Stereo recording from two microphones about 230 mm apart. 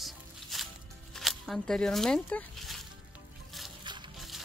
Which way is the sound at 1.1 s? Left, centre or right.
Centre.